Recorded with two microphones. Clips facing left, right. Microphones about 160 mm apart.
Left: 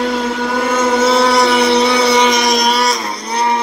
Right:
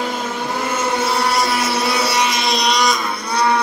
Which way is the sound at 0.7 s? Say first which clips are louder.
Left 8 dB; 75° left (ahead or behind).